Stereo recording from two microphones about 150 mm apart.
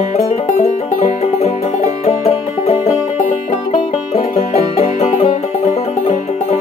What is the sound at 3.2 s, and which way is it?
Music, 55° left (ahead or behind).